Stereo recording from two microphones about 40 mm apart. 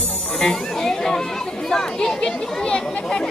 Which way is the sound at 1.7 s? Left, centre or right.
Centre.